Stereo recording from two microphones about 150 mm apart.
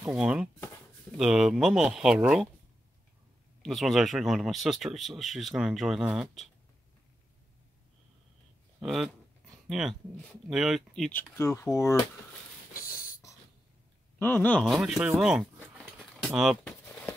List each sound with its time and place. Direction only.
0.0 s speech: 5° right (ahead or behind)
3.6 s speech: centre (ahead or behind)
8.8 s speech: centre (ahead or behind)
11.1 s speech: 15° left (ahead or behind)
12.8 s dog: 70° left (ahead or behind)
14.1 s speech: 10° left (ahead or behind)
14.7 s speech: centre (ahead or behind)